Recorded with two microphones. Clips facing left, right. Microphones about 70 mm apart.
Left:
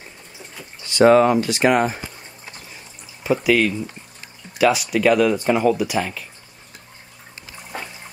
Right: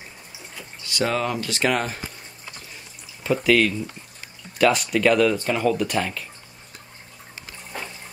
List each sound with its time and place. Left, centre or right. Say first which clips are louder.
0.8 s speech: left 11 dB; left
3.3 s speech: left 1 dB; centre
5.3 s speech: left 4 dB; centre